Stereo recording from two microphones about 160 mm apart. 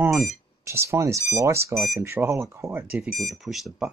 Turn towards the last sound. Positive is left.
turn(degrees=0)  # may be behind; listen again after turning